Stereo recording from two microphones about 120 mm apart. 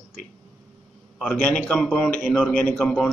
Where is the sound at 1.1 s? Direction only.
10° left (ahead or behind).